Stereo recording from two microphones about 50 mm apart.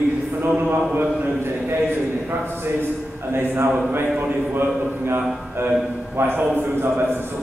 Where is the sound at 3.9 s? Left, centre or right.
Right.